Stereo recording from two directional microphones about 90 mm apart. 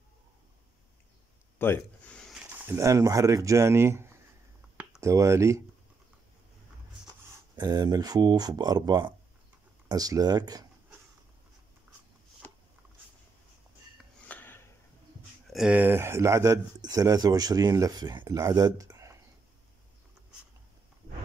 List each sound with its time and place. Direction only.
1.6 s speech: 25° left (ahead or behind)
2.0 s a sound: 10° left (ahead or behind)
2.6 s speech: 30° right (ahead or behind)
7.5 s speech: 45° right (ahead or behind)
14.2 s a sound: 20° left (ahead or behind)
15.7 s speech: 25° right (ahead or behind)